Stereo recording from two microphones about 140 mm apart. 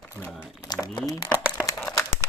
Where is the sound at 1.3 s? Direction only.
10° right (ahead or behind).